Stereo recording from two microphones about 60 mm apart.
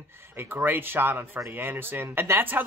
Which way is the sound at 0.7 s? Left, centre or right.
Right.